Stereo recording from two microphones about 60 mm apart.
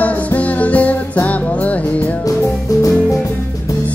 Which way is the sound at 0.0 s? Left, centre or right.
Left.